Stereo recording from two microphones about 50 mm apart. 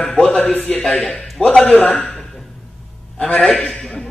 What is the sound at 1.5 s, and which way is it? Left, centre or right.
Speech, centre.